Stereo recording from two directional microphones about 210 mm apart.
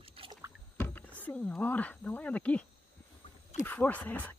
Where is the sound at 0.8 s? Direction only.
10° left (ahead or behind).